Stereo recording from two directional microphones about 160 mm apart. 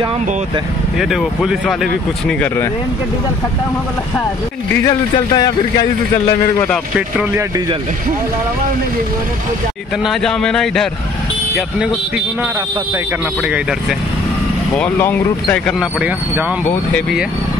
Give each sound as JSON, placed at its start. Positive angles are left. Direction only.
{"t": 0.9, "sound": "speech", "side_deg": 0}
{"t": 4.8, "sound": "speech", "side_deg": 25}
{"t": 7.0, "sound": "speech", "side_deg": -10}
{"t": 10.0, "sound": "speech", "side_deg": 5}
{"t": 13.5, "sound": "speech", "side_deg": -5}
{"t": 14.8, "sound": "speech", "side_deg": 10}
{"t": 15.8, "sound": "speech", "side_deg": -5}